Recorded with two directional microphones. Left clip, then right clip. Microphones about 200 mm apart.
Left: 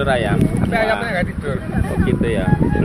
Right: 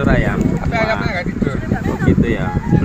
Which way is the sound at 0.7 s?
20° left (ahead or behind).